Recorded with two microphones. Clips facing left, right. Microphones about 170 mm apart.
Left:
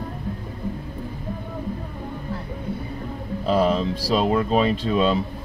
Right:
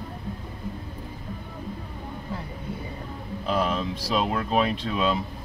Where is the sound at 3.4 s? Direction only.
35° left (ahead or behind).